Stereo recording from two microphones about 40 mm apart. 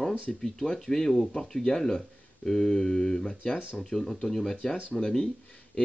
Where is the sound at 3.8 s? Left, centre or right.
Centre.